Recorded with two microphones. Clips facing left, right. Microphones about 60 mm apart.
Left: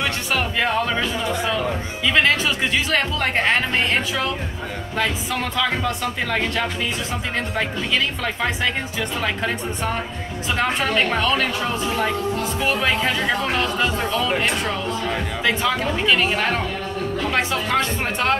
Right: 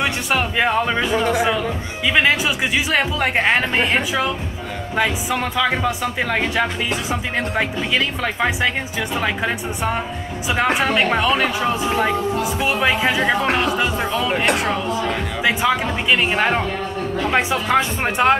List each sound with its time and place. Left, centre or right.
0.0 s music: centre
2.0 s speech: centre